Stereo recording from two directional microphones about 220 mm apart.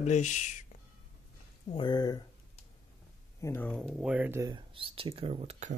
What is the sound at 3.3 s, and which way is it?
Speech, 10° left (ahead or behind).